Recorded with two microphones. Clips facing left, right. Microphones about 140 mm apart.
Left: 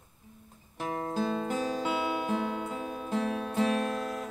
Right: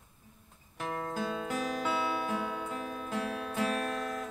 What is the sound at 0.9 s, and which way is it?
Music, 30° left (ahead or behind).